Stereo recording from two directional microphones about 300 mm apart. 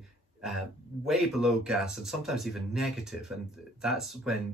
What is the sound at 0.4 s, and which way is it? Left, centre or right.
Speech, centre.